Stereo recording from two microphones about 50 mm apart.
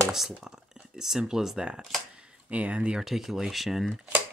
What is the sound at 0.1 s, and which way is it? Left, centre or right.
Speech, centre.